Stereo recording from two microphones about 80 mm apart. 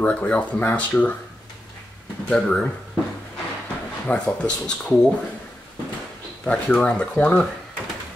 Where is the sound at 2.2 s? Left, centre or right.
Centre.